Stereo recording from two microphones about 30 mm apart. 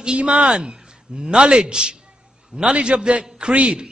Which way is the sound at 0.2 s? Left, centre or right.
Right.